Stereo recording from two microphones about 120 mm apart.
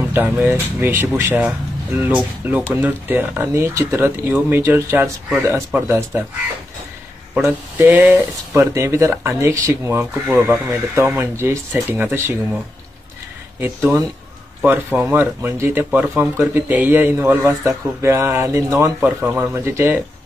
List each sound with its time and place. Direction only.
0.1 s speech: 15° right (ahead or behind)
7.4 s speech: 15° right (ahead or behind)
13.6 s speech: 15° right (ahead or behind)